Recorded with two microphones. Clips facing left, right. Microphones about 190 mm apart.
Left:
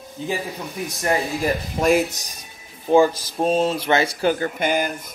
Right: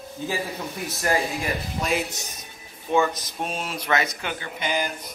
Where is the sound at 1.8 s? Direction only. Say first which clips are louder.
Left 9 dB; 45° left (ahead or behind).